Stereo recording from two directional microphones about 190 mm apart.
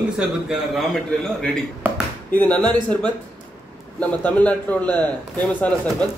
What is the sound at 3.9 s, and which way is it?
A man's voice, 5° left (ahead or behind).